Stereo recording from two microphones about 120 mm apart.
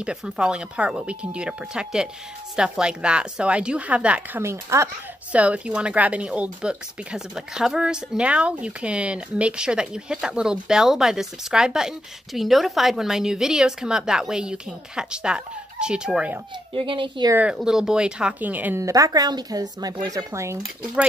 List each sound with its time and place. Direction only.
0.0 s speech: 5° right (ahead or behind)
4.4 s speech: 25° right (ahead or behind)
5.3 s speech: 10° right (ahead or behind)
16.7 s speech: 45° right (ahead or behind)
17.6 s speech: 5° right (ahead or behind)
18.8 s speech: 25° right (ahead or behind)